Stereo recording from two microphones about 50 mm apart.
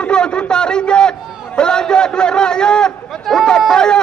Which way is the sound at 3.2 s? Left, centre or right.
Centre.